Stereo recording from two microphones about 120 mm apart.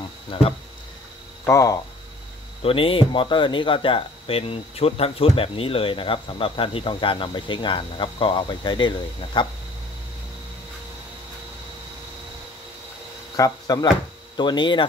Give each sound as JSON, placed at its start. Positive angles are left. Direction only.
{"t": 0.3, "sound": "speech", "side_deg": 45}
{"t": 1.4, "sound": "speech", "side_deg": 25}
{"t": 2.6, "sound": "speech", "side_deg": 50}
{"t": 13.4, "sound": "speech", "side_deg": 30}